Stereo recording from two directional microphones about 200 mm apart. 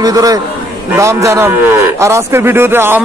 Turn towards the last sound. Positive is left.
turn(degrees=-10)  # may be behind; listen again after turning